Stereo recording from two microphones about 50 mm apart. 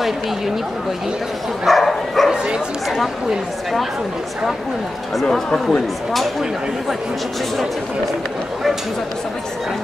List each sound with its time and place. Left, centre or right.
1.7 s dog: centre
2.3 s bow-wow: centre
3.0 s speech: centre
5.2 s speech: centre